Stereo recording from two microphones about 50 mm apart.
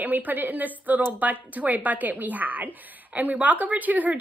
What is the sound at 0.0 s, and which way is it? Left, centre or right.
A woman's voice, right.